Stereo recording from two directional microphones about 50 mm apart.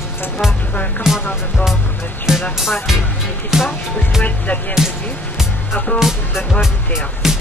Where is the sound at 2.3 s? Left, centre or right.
Centre.